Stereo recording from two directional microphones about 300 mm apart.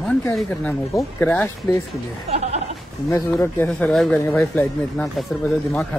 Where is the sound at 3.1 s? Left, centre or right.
Centre.